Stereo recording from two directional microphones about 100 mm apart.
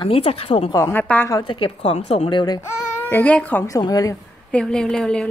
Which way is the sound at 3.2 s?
15° left (ahead or behind).